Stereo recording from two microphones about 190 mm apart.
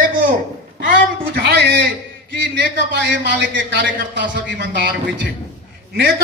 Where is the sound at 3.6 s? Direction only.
70° right (ahead or behind).